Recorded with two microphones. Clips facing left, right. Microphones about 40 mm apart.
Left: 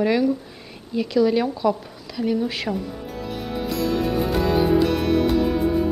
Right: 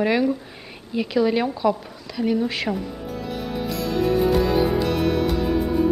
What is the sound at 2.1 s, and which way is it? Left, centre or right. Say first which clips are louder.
Music: right 1 dB; centre.